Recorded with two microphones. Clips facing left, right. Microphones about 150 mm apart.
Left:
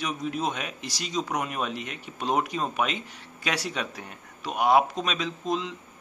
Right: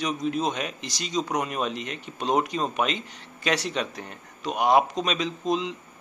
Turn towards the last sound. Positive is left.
turn(degrees=0)  # may be behind; listen again after turning